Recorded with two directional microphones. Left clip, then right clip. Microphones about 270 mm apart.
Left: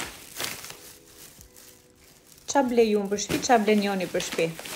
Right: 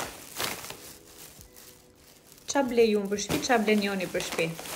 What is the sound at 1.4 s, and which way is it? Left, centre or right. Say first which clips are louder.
Music: even; right.